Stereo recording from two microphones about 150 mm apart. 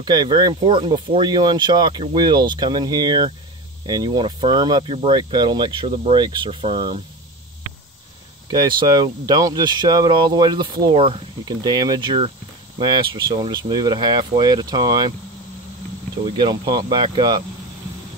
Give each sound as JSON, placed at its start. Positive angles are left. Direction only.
{"t": 0.0, "sound": "speech", "side_deg": -30}
{"t": 8.5, "sound": "speech", "side_deg": -30}
{"t": 16.3, "sound": "speech", "side_deg": -30}